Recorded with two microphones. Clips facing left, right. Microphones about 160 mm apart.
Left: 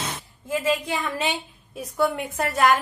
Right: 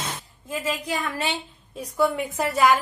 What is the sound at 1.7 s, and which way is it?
A woman's voice, centre (ahead or behind).